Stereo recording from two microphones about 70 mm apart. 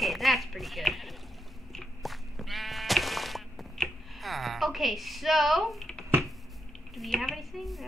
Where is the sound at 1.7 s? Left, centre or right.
Centre.